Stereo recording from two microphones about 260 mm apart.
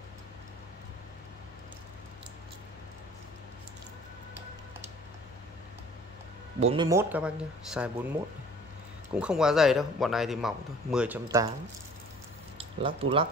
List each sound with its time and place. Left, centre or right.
6.6 s speech: right
6.9 s speech: centre
9.1 s speech: centre
11.2 s speech: centre
12.5 s speech: right